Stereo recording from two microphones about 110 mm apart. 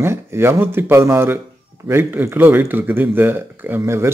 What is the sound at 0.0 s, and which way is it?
Speech, 25° right (ahead or behind).